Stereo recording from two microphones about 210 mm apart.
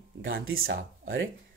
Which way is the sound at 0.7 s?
65° right (ahead or behind).